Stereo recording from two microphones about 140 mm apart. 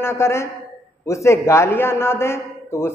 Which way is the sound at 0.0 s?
20° left (ahead or behind).